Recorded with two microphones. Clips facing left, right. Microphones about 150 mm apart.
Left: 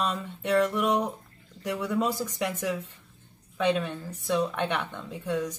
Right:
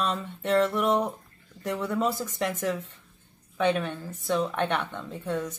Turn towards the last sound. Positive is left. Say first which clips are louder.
# left 1 dB
turn(degrees=10)  # may be behind; listen again after turning